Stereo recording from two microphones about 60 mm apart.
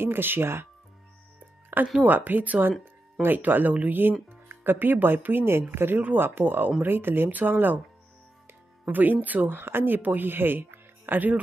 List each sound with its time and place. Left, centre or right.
0.0 s speech: right
1.7 s speech: right
8.8 s speech: right